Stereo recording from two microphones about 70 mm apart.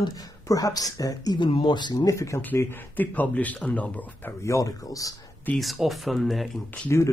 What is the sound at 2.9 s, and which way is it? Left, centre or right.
Speech, left.